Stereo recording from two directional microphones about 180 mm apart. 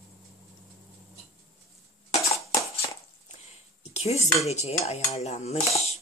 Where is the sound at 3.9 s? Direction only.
35° left (ahead or behind).